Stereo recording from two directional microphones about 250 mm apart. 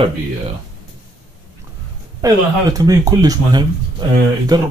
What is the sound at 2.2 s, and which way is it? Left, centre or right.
Speech, centre.